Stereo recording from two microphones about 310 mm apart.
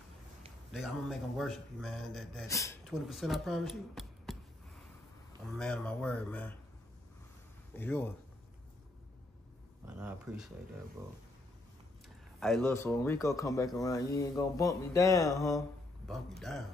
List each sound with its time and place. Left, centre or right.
0.7 s speech: centre
5.6 s speech: centre
7.7 s speech: centre
9.9 s speech: centre
12.4 s speech: centre